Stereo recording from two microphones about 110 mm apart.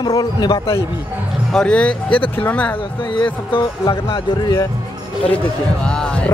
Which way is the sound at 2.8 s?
50° left (ahead or behind).